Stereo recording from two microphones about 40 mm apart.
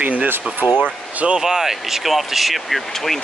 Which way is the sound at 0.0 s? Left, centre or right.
Right.